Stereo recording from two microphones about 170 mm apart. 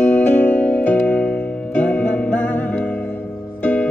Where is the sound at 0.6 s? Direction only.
10° left (ahead or behind).